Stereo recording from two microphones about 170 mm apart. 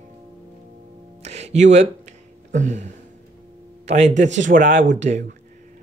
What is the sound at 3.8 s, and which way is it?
Speech, 45° right (ahead or behind).